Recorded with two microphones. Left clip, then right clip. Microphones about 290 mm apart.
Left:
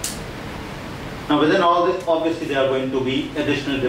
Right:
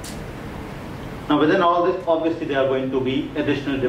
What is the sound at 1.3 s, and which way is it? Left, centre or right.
Speech, centre.